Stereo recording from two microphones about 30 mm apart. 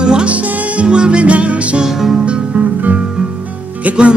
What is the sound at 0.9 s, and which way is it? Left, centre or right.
Music, right.